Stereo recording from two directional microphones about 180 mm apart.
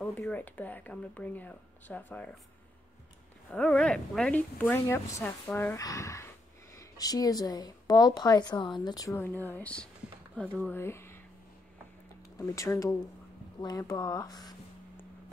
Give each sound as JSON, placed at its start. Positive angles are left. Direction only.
{"t": 0.0, "sound": "a woman's voice", "side_deg": 10}
{"t": 3.5, "sound": "a woman's voice", "side_deg": 5}
{"t": 12.4, "sound": "a woman's voice", "side_deg": 15}